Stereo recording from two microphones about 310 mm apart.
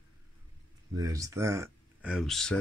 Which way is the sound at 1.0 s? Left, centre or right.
Centre.